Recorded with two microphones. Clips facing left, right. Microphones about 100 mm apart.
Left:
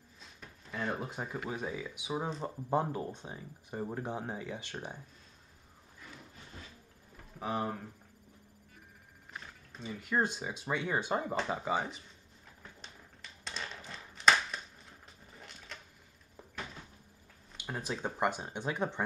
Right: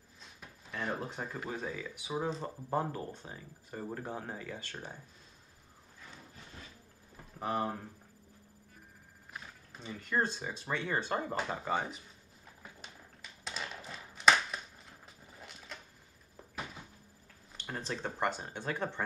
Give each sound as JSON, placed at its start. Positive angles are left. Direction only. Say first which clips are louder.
{"t": 0.4, "sound": "speech", "louder": "left 1 dB", "side_deg": 0}
{"t": 7.3, "sound": "speech", "louder": "right 1 dB", "side_deg": 0}
{"t": 9.3, "sound": "speech", "louder": "even", "side_deg": 0}
{"t": 13.4, "sound": "a sound", "louder": "right 1 dB", "side_deg": -5}
{"t": 16.3, "sound": "door", "louder": "right 1 dB", "side_deg": -10}
{"t": 17.6, "sound": "speech", "louder": "left 1 dB", "side_deg": 10}